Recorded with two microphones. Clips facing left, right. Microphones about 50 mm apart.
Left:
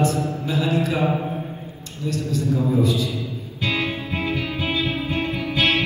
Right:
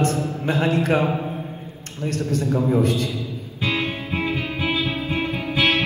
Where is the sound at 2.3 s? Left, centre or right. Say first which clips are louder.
Right 1 dB; right.